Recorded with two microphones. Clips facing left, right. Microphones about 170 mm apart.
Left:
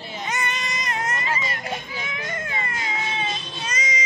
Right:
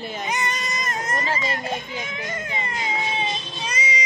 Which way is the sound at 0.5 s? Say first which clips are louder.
Even; 45° right (ahead or behind).